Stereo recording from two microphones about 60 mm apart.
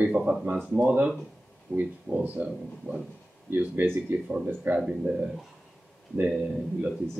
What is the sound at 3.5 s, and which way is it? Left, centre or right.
Speech, right.